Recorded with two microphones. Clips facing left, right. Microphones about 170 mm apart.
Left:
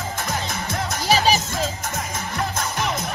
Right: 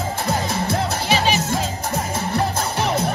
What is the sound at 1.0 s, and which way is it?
Music, 35° left (ahead or behind).